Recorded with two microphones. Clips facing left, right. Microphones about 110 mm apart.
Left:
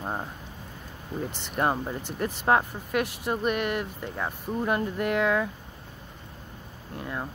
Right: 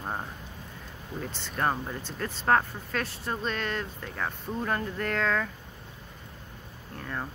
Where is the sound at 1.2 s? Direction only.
15° left (ahead or behind).